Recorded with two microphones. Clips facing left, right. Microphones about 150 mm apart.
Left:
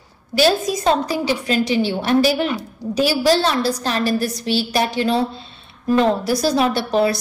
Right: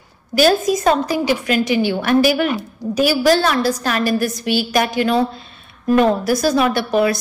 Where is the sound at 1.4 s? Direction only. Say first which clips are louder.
Right 1 dB; 35° left (ahead or behind).